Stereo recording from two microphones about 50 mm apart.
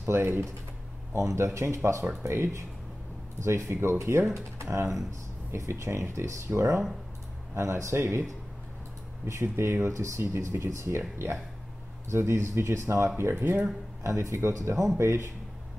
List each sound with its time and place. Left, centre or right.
0.0 s speech: right
1.1 s speech: right
3.4 s speech: right
4.1 s speech: right
4.6 s speech: right
5.5 s speech: right
9.2 s speech: right
10.6 s speech: right
13.2 s speech: right
14.0 s speech: right
15.0 s speech: right